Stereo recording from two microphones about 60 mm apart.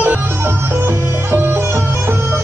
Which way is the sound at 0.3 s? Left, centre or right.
Right.